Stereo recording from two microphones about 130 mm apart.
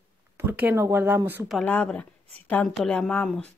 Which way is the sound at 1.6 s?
10° left (ahead or behind).